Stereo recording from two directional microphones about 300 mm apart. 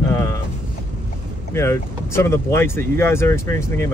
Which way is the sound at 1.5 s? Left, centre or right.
Centre.